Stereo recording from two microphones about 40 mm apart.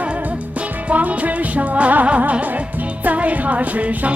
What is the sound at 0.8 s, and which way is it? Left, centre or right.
Music, right.